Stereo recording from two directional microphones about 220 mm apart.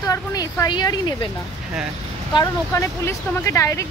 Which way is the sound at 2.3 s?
15° left (ahead or behind).